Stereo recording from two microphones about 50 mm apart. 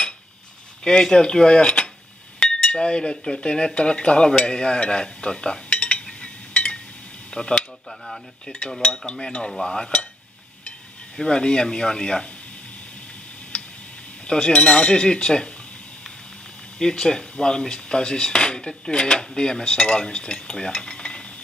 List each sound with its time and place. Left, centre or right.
0.8 s speech: centre
8.7 s speech: centre
11.1 s speech: centre
13.5 s tick: left
14.2 s speech: centre
16.7 s speech: centre